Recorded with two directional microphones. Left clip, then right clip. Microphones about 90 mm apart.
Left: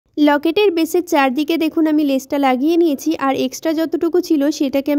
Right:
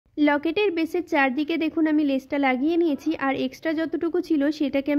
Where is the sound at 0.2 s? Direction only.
55° left (ahead or behind).